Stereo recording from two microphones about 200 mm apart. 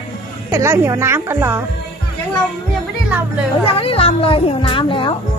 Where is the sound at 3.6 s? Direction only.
30° left (ahead or behind).